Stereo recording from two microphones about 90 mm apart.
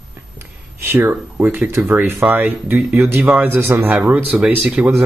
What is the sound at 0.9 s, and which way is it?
Speech, 25° right (ahead or behind).